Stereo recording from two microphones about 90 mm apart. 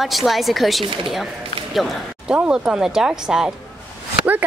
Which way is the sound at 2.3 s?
10° right (ahead or behind).